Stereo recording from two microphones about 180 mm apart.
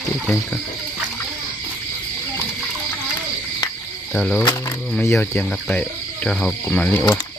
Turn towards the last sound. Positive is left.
turn(degrees=10)  # may be behind; listen again after turning